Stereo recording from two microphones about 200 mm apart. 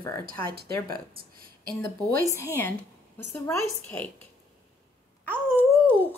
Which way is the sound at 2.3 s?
10° left (ahead or behind).